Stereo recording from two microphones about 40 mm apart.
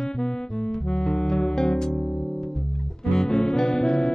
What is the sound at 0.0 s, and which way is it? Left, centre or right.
Music, centre.